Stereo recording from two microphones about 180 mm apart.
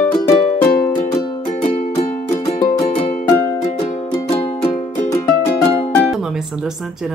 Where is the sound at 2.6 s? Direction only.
30° left (ahead or behind).